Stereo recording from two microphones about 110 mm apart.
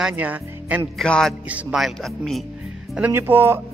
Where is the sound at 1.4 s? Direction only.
15° right (ahead or behind).